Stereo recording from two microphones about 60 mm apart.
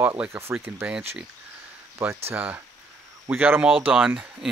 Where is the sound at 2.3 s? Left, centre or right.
Right.